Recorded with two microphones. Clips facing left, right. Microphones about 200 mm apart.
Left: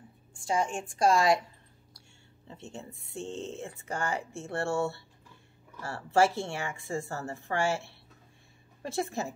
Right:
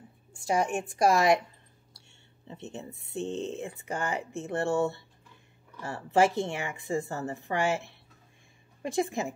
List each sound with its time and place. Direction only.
0.5 s a woman's voice: 20° right (ahead or behind)